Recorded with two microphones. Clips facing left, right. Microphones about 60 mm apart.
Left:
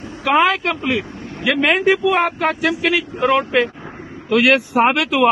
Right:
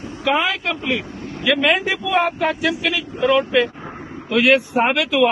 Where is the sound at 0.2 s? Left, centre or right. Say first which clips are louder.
Left 4 dB; left.